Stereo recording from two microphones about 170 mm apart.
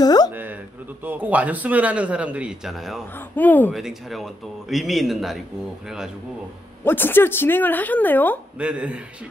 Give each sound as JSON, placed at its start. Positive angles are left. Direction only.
{"t": 0.0, "sound": "a sound", "side_deg": 25}
{"t": 0.3, "sound": "a sound", "side_deg": -10}
{"t": 1.0, "sound": "a man's voice", "side_deg": -10}
{"t": 3.2, "sound": "speech", "side_deg": 10}
{"t": 3.7, "sound": "speech", "side_deg": 0}
{"t": 6.8, "sound": "speech", "side_deg": 10}
{"t": 8.5, "sound": "a man's voice", "side_deg": -5}